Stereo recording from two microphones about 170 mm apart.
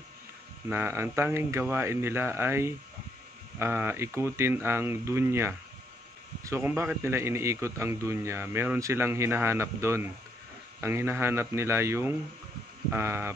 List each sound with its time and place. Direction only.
0.7 s a man's voice: 15° right (ahead or behind)